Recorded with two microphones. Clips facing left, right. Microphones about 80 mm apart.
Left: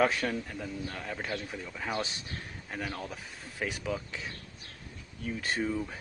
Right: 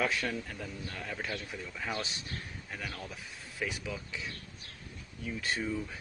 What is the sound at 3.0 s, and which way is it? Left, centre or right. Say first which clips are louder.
A man's voice: left 4 dB; left.